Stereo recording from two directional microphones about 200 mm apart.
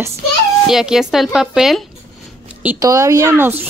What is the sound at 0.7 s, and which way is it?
A woman's voice, centre (ahead or behind).